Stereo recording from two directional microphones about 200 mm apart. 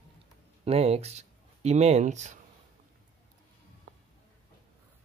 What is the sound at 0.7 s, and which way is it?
Speech, 30° right (ahead or behind).